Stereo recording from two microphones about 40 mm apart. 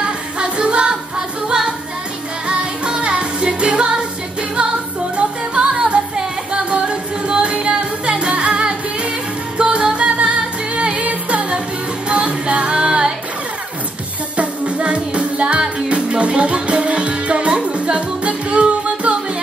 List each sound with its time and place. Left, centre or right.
0.0 s music: right
5.1 s music: right
14.3 s music: right